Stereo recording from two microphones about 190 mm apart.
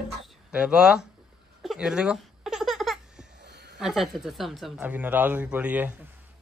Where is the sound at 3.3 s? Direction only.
60° right (ahead or behind).